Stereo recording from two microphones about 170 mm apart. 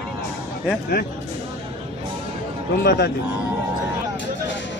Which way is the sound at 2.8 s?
75° left (ahead or behind).